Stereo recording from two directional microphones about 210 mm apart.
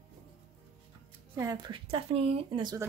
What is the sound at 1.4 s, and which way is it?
Speech, 20° right (ahead or behind).